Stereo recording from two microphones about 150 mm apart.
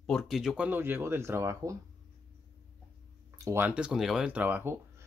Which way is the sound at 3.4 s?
15° right (ahead or behind).